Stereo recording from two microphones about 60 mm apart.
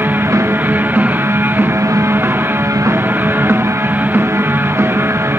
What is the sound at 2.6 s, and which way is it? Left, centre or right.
Music, right.